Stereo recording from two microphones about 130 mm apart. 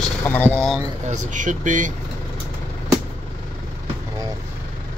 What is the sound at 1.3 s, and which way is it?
Speech, 75° right (ahead or behind).